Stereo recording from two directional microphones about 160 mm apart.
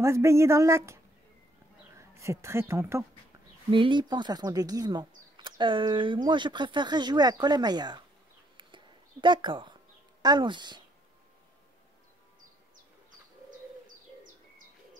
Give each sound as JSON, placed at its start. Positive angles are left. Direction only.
{"t": 0.0, "sound": "speech", "side_deg": -15}
{"t": 2.0, "sound": "a woman's voice", "side_deg": -20}
{"t": 3.7, "sound": "speech", "side_deg": -30}
{"t": 8.5, "sound": "a sound", "side_deg": -30}
{"t": 10.2, "sound": "speech", "side_deg": -30}